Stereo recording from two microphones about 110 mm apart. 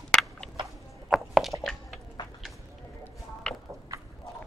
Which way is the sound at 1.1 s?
Centre (ahead or behind).